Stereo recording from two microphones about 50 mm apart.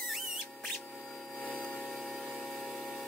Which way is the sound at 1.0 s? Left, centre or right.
Centre.